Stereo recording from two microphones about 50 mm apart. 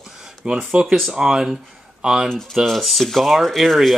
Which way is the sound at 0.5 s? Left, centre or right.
Centre.